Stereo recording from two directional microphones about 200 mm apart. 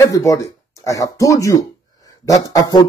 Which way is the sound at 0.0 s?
15° left (ahead or behind).